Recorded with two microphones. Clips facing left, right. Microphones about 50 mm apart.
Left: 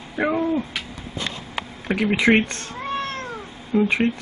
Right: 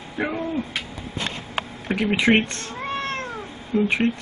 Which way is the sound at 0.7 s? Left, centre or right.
Right.